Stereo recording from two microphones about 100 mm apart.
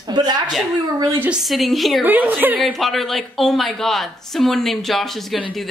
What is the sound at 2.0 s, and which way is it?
Speech, 20° right (ahead or behind).